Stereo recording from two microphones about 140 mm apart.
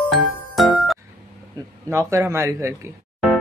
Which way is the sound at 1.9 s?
20° right (ahead or behind).